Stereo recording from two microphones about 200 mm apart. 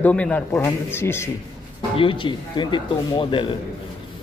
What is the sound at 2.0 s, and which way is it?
Speech, 25° left (ahead or behind).